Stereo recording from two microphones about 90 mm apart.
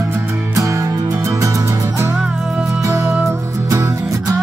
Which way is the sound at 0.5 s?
35° right (ahead or behind).